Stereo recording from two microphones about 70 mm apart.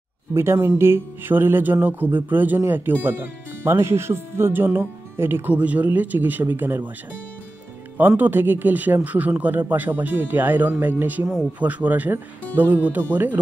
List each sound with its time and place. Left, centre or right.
0.3 s speech: right
8.2 s speech: right